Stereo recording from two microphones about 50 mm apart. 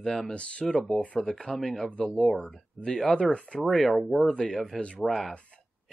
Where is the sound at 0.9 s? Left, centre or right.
Centre.